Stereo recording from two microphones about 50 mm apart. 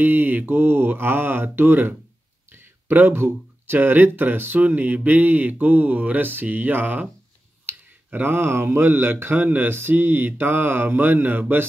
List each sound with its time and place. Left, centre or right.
0.0 s speech: right
7.6 s a sound: right
8.6 s speech: right